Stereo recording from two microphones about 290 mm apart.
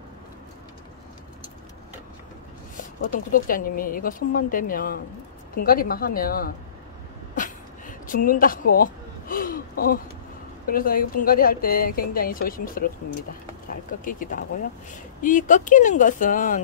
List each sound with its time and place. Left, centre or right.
3.0 s speech: left
7.3 s a sound: left
10.7 s speech: left
14.0 s speech: left